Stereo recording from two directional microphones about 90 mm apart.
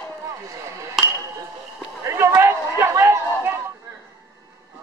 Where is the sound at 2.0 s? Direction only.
30° right (ahead or behind).